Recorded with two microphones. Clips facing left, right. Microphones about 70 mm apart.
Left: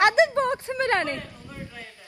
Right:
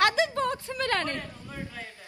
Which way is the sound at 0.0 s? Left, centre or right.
Left.